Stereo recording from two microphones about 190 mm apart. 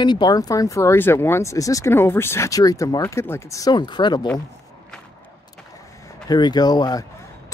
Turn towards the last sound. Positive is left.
turn(degrees=20)  # may be behind; listen again after turning